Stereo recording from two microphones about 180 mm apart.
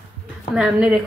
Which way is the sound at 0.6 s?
5° right (ahead or behind).